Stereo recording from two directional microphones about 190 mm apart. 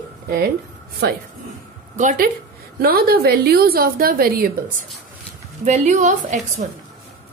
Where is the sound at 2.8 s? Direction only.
55° right (ahead or behind).